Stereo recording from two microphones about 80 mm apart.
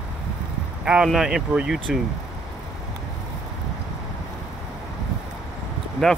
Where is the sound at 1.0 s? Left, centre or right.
Centre.